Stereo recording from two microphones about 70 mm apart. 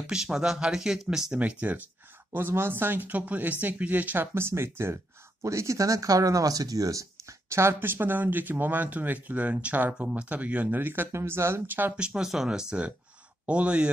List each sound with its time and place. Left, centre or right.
0.0 s speech: centre
1.4 s speech: right
2.3 s speech: right
4.3 s speech: right
5.4 s speech: right
12.0 s speech: centre